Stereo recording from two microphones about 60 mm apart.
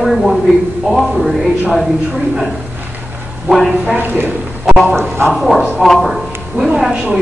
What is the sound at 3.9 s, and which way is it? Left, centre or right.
Speech, right.